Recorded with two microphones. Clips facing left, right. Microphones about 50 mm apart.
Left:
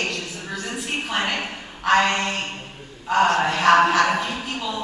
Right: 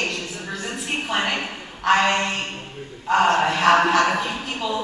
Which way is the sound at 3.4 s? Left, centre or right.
Centre.